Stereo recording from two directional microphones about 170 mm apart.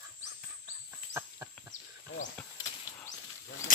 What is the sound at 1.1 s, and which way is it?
Chicken, 15° right (ahead or behind).